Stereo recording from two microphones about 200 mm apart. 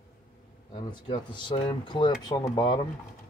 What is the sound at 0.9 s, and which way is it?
Speech, 25° left (ahead or behind).